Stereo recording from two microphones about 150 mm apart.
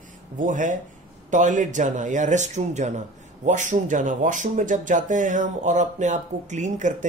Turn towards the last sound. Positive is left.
turn(degrees=-55)  # may be behind; listen again after turning